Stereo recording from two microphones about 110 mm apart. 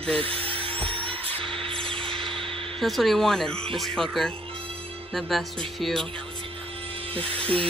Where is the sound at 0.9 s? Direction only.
55° right (ahead or behind).